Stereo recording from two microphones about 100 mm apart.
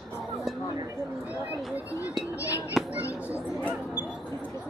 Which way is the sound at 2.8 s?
Centre (ahead or behind).